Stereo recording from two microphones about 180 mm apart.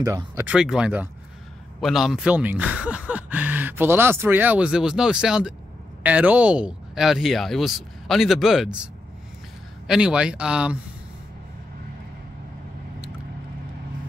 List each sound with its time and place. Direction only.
0.0 s speech: 20° right (ahead or behind)
0.5 s speech: 5° right (ahead or behind)
9.8 s speech: 5° right (ahead or behind)